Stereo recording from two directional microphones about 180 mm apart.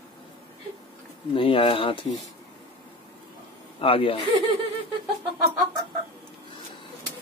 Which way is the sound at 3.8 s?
30° left (ahead or behind).